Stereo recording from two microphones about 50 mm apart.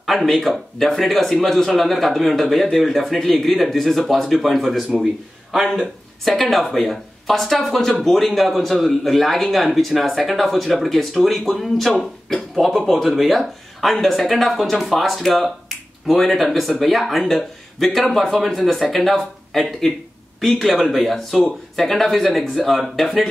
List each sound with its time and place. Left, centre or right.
0.0 s speech: centre